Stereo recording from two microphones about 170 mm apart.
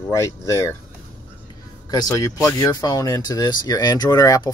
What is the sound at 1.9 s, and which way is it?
Speech, 20° left (ahead or behind).